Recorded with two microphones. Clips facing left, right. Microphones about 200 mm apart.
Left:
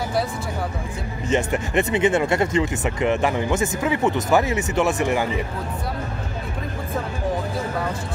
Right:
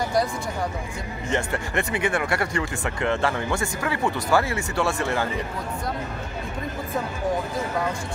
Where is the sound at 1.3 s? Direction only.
20° left (ahead or behind).